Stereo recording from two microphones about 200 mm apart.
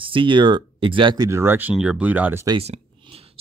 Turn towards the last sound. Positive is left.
turn(degrees=-30)  # may be behind; listen again after turning